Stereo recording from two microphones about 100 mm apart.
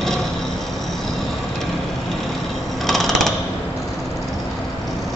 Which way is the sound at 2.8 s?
Centre (ahead or behind).